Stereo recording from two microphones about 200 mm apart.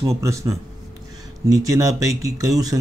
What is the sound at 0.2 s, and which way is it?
Speech, 15° right (ahead or behind).